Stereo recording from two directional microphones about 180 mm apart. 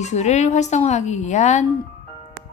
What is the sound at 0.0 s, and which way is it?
Speech, 40° left (ahead or behind).